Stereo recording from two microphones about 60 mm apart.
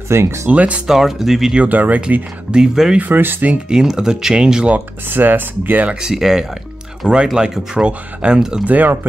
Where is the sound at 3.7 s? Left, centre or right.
Centre.